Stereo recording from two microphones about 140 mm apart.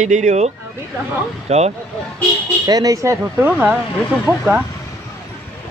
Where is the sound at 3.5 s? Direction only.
5° right (ahead or behind).